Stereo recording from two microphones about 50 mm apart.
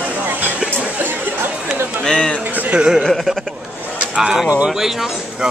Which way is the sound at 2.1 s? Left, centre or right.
Left.